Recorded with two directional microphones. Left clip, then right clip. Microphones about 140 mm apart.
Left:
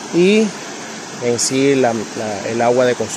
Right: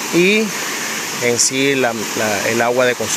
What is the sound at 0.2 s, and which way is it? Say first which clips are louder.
Speech: left 2 dB; 20° left (ahead or behind).